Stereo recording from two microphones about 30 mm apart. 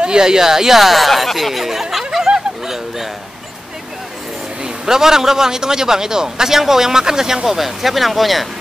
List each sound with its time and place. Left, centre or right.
0.0 s speech: right; by 2.0 s centre
2.1 s snicker: centre
4.8 s a man's voice: centre
7.4 s speech: centre